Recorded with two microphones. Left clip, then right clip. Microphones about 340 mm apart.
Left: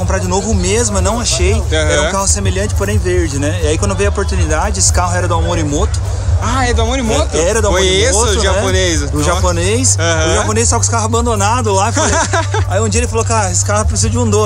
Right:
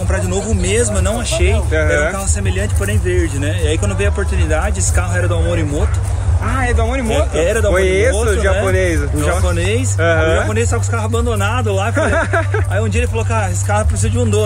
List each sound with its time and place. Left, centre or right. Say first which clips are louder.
0.3 s speech: left 3 dB; left
1.7 s speech: left 1 dB; centre
3.6 s speech: left 3 dB; centre
4.6 s speech: left 8 dB; left
5.3 s speech: left 3 dB; centre
7.7 s speech: left 2 dB; centre
9.5 s speech: left 4 dB; centre
10.0 s speech: right 2 dB; centre
10.5 s speech: left 5 dB; centre
11.9 s speech: left 2 dB; centre
12.8 s speech: left 4 dB; centre